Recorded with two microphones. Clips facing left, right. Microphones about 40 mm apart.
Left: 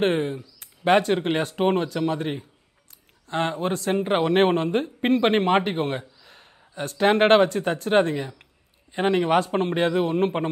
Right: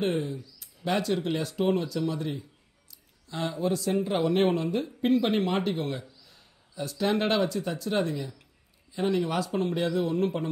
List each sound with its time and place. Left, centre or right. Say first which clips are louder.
0.0 s speech: left 6 dB; left